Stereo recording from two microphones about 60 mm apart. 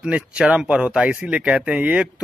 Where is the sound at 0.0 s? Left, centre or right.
Centre.